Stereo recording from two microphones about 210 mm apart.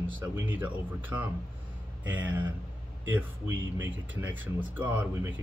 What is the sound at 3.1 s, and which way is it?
Speech, 10° right (ahead or behind).